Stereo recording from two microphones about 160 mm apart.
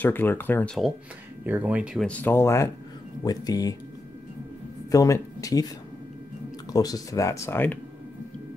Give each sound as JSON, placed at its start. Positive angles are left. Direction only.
{"t": 0.0, "sound": "speech", "side_deg": 10}
{"t": 1.4, "sound": "speech", "side_deg": -10}
{"t": 2.0, "sound": "speech", "side_deg": 10}
{"t": 4.9, "sound": "speech", "side_deg": 20}
{"t": 6.7, "sound": "speech", "side_deg": 25}